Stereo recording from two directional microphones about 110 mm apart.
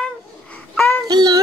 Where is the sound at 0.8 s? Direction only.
15° left (ahead or behind).